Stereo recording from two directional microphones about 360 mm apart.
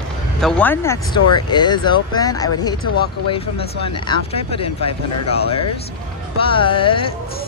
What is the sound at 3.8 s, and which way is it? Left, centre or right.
Speech, centre.